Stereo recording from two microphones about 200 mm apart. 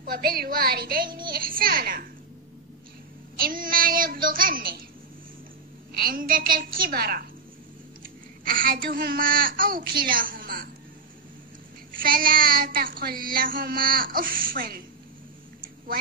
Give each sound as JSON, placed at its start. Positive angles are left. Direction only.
{"t": 0.0, "sound": "child singing", "side_deg": -45}
{"t": 3.3, "sound": "child singing", "side_deg": -45}
{"t": 5.9, "sound": "child singing", "side_deg": -45}
{"t": 8.0, "sound": "a child's voice", "side_deg": -45}
{"t": 11.9, "sound": "child singing", "side_deg": -45}